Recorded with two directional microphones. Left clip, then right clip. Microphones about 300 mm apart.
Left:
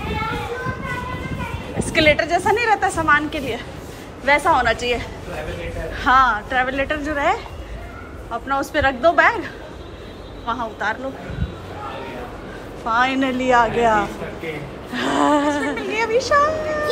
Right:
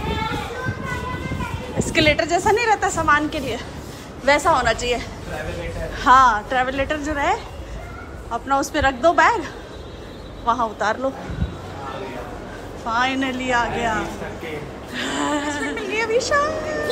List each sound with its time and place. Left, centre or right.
1.8 s a woman's voice: centre
12.8 s a woman's voice: centre